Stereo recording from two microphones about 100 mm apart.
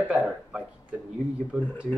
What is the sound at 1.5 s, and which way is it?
Speech, 15° right (ahead or behind).